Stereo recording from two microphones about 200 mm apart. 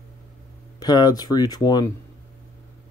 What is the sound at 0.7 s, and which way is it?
Speech, 20° left (ahead or behind).